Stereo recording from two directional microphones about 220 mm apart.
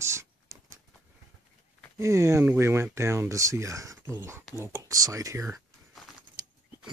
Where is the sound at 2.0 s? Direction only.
15° right (ahead or behind).